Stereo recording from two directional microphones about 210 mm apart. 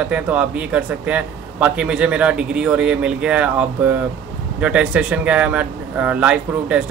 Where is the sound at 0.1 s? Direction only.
5° right (ahead or behind).